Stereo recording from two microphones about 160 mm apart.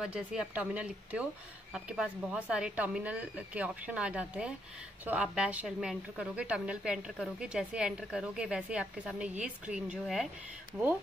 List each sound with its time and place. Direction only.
0.0 s a woman's voice: 5° right (ahead or behind)